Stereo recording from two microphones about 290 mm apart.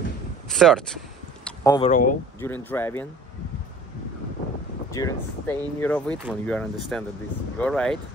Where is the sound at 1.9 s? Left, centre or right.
Left.